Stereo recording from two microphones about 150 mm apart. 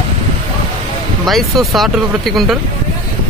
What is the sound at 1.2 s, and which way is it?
Speech, centre (ahead or behind).